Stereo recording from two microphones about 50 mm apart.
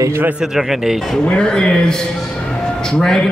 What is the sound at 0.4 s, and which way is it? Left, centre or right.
Speech, centre.